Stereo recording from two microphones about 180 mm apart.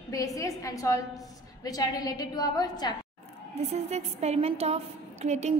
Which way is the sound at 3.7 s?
35° right (ahead or behind).